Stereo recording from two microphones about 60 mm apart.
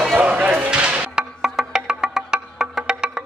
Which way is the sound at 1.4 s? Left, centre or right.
Centre.